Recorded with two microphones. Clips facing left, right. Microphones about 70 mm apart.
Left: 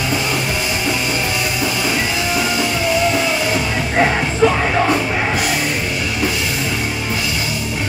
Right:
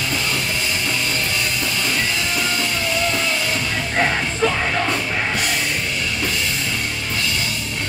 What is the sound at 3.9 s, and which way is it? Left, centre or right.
Music, centre.